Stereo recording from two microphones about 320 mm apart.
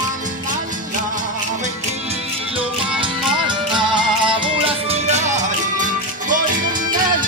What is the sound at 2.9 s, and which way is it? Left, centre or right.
Music, centre.